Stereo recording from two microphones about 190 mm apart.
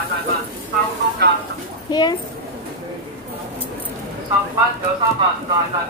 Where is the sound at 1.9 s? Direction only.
20° left (ahead or behind).